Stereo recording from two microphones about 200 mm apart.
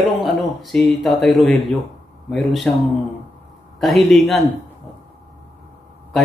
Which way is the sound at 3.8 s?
Centre (ahead or behind).